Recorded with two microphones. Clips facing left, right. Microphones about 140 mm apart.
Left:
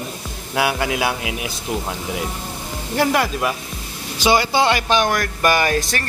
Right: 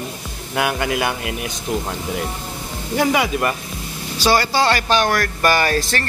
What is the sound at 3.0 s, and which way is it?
Speech, centre (ahead or behind).